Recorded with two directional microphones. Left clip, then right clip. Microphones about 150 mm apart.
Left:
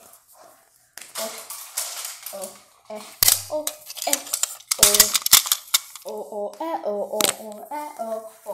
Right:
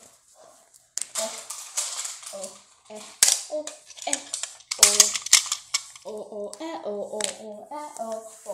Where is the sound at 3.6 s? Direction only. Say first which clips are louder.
Left 4 dB; 45° left (ahead or behind); by 5.8 s 65° left (ahead or behind).